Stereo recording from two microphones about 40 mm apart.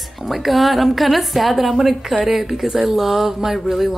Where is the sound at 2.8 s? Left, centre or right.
Centre.